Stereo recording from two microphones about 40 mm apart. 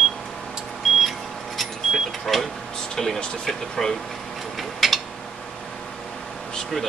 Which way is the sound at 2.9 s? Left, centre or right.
Centre.